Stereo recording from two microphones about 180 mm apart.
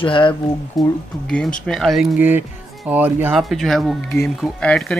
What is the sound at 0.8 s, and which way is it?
Speech, centre (ahead or behind).